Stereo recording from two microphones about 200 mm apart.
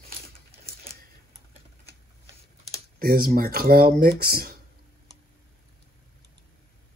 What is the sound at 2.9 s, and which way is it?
Speech, 45° right (ahead or behind).